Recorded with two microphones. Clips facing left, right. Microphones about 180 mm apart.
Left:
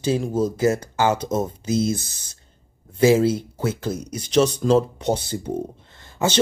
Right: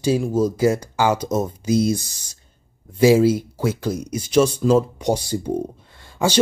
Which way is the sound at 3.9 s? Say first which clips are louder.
Right 1 dB; 10° right (ahead or behind).